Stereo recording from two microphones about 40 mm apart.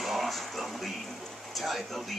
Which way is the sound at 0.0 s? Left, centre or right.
Centre.